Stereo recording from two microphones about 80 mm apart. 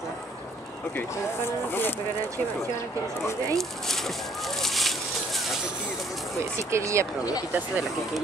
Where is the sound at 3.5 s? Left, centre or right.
Centre.